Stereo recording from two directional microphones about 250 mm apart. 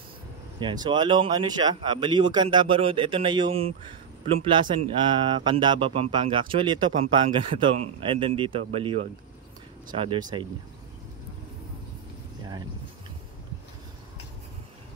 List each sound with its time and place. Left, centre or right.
0.6 s speech: centre